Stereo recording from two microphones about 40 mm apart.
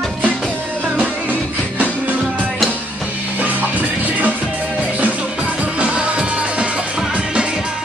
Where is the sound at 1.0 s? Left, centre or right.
Right.